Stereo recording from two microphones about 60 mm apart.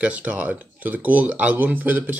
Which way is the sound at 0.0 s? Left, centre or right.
Right.